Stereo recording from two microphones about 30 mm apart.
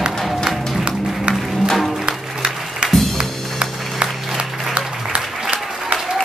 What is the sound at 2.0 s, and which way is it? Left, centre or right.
Music, right.